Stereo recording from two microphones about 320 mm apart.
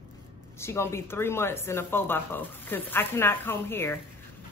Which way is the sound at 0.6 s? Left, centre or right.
Centre.